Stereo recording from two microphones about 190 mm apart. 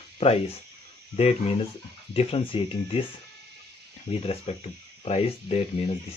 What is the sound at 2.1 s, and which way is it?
Speech, 30° left (ahead or behind).